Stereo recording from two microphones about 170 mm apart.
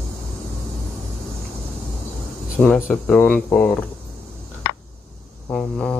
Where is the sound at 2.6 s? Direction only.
5° left (ahead or behind).